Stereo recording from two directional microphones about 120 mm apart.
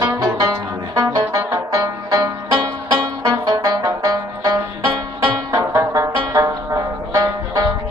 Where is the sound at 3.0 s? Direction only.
35° right (ahead or behind).